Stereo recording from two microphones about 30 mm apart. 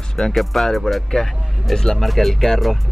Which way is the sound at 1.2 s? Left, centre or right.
Centre.